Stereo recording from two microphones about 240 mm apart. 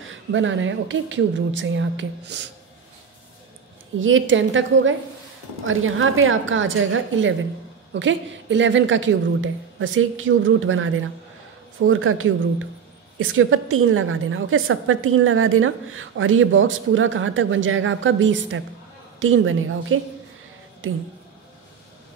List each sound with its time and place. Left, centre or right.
0.0 s a woman's voice: right
4.0 s a woman's voice: right